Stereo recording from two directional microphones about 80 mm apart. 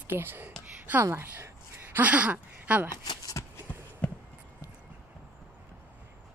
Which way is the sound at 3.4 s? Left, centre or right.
Left.